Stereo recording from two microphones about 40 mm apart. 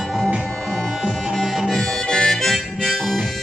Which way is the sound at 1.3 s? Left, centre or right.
Centre.